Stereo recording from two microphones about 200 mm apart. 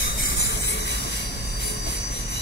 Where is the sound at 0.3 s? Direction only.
60° left (ahead or behind).